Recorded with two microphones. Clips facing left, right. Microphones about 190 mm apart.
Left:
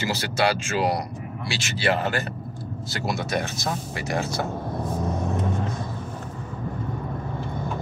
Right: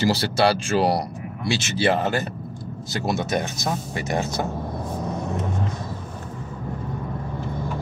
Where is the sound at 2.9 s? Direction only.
20° right (ahead or behind).